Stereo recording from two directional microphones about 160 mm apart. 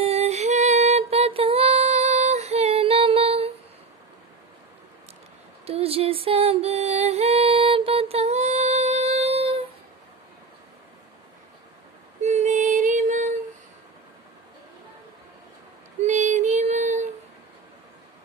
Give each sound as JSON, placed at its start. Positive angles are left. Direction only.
{"t": 0.0, "sound": "music", "side_deg": -40}
{"t": 5.7, "sound": "music", "side_deg": -40}
{"t": 12.2, "sound": "female singing", "side_deg": -45}
{"t": 16.0, "sound": "child singing", "side_deg": -50}